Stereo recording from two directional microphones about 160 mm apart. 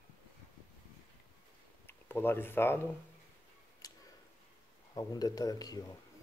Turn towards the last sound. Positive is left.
turn(degrees=25)  # may be behind; listen again after turning